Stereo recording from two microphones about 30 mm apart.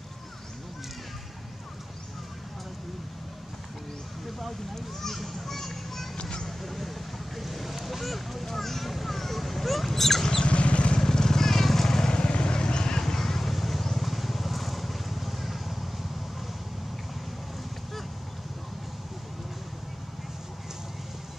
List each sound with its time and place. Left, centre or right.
5.1 s children playing: centre
6.4 s a sound: centre
7.3 s vehicle: centre
8.5 s a sound: centre
10.4 s vehicle: left
11.0 s vehicle: centre
12.1 s vehicle: left
13.0 s vehicle: centre